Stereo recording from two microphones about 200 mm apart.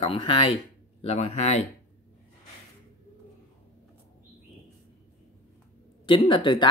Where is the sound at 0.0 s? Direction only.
25° left (ahead or behind).